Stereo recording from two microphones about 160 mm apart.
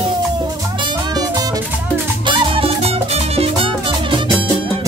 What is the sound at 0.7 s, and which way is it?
Music, 25° right (ahead or behind).